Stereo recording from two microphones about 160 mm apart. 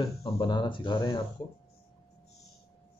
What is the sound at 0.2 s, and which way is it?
Speech, 30° left (ahead or behind).